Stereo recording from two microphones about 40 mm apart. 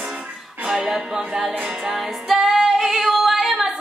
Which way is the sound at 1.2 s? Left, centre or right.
Right.